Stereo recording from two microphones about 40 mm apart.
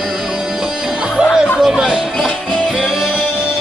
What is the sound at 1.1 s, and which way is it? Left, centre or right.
Music, centre.